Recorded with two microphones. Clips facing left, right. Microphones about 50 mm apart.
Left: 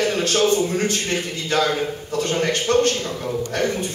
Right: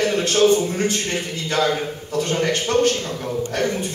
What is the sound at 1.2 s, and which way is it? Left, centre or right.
Speech, centre.